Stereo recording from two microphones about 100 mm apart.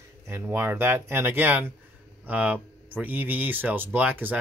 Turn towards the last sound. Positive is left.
turn(degrees=-20)  # may be behind; listen again after turning